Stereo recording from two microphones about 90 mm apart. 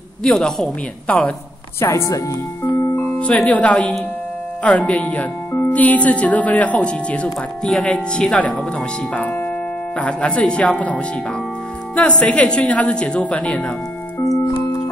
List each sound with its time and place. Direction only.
0.2 s speech: 5° left (ahead or behind)
1.8 s speech: 30° left (ahead or behind)
3.0 s music: 15° left (ahead or behind)
3.4 s speech: 15° left (ahead or behind)
14.2 s music: 35° left (ahead or behind)
14.5 s music: 55° left (ahead or behind)